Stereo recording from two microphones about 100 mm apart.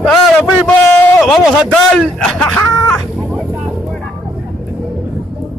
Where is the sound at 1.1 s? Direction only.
Centre (ahead or behind).